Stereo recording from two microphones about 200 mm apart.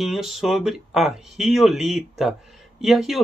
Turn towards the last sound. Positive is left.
turn(degrees=0)  # may be behind; listen again after turning